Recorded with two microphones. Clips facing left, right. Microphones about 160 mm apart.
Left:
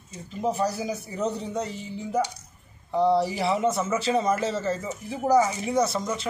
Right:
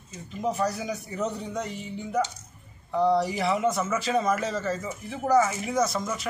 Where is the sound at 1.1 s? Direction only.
Centre (ahead or behind).